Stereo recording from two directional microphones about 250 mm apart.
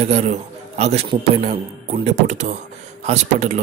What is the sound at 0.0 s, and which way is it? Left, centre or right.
Speech, right.